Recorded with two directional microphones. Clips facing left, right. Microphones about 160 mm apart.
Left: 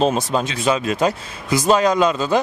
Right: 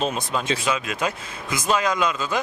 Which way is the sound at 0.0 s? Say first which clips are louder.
Left 7 dB; 35° left (ahead or behind).